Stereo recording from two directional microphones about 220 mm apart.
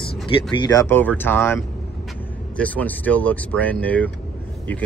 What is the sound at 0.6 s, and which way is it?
Speech, 15° left (ahead or behind).